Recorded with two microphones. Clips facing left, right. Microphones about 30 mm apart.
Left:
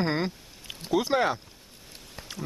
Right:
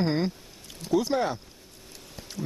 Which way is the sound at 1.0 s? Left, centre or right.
Centre.